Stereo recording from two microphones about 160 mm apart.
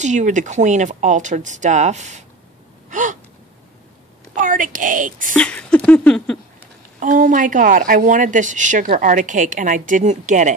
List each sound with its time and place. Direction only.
0.0 s speech: 50° right (ahead or behind)
2.9 s gasp: 50° right (ahead or behind)
4.4 s a woman's voice: 55° right (ahead or behind)
5.3 s a sound: 5° left (ahead or behind)
7.0 s speech: 55° right (ahead or behind)